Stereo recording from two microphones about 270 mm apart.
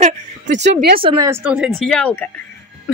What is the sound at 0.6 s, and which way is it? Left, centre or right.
Speech, right.